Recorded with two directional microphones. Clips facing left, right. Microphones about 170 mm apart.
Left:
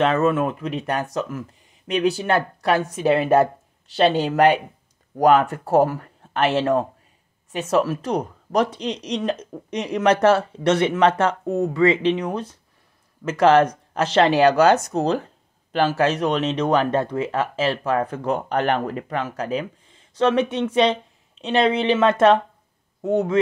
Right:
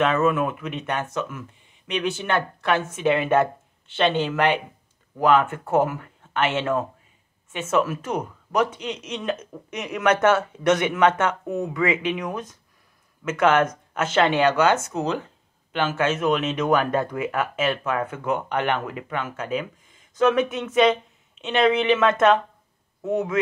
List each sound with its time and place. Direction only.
0.0 s speech: 35° left (ahead or behind)